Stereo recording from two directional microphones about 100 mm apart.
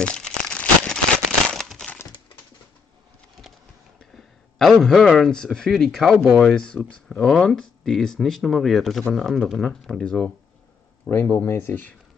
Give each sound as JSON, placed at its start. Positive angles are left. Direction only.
{"t": 0.0, "sound": "crumpling", "side_deg": 10}
{"t": 4.6, "sound": "speech", "side_deg": 5}
{"t": 11.1, "sound": "speech", "side_deg": 20}